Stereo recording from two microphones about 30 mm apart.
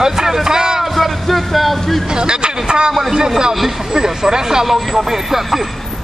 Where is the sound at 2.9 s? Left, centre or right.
Centre.